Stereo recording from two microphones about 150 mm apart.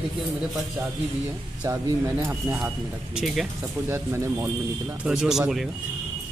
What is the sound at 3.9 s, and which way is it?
Speech, 15° right (ahead or behind).